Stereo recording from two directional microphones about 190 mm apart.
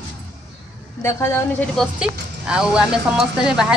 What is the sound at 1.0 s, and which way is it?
Speech, 15° left (ahead or behind).